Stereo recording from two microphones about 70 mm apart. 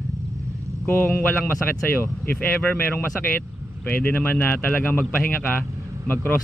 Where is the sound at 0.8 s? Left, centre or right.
Left.